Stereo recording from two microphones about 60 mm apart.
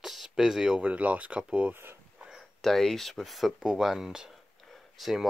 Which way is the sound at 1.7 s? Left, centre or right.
Right.